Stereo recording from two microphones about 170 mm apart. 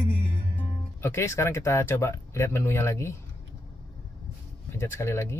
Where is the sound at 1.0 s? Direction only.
15° left (ahead or behind).